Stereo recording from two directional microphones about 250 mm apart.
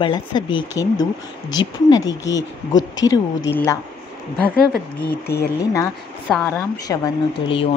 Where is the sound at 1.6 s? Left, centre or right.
Centre.